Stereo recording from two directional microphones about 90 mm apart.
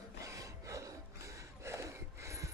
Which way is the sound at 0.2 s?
35° right (ahead or behind).